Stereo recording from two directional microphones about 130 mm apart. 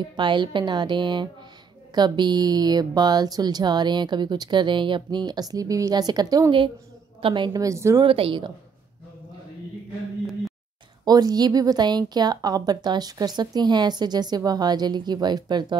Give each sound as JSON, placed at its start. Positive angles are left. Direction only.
{"t": 0.1, "sound": "a woman's voice", "side_deg": -35}
{"t": 8.0, "sound": "a woman's voice", "side_deg": -40}
{"t": 11.1, "sound": "a woman's voice", "side_deg": -30}